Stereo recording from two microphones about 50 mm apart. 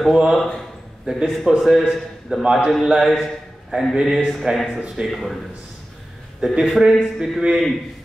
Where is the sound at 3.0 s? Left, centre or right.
Centre.